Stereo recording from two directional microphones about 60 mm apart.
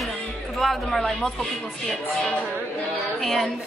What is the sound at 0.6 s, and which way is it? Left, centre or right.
A woman's voice, centre.